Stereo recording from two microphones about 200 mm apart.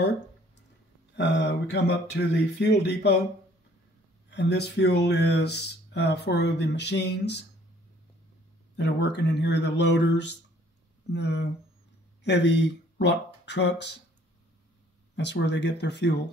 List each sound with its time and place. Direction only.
1.1 s speech: 60° left (ahead or behind)
4.3 s speech: 55° left (ahead or behind)
8.7 s speech: 60° left (ahead or behind)
15.1 s speech: 60° left (ahead or behind)